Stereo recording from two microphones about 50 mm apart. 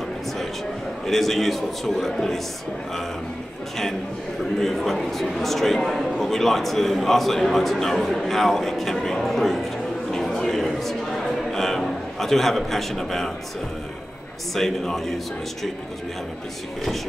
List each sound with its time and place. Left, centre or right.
1.0 s a man's voice: centre
4.6 s a man's voice: centre
10.1 s a sound: centre
14.5 s a man's voice: centre